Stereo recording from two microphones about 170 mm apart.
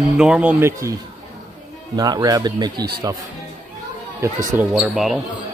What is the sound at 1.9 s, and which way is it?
Speech, 25° right (ahead or behind).